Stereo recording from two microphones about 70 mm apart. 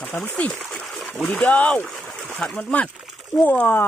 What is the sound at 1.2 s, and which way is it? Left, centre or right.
Speech, left.